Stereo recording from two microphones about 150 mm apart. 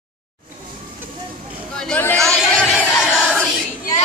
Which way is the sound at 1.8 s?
10° left (ahead or behind).